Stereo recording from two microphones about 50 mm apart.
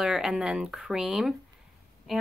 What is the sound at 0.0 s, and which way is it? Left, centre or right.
A woman's voice, centre.